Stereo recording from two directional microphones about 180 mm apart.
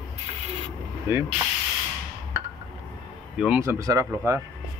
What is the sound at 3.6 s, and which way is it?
Speech, 15° right (ahead or behind).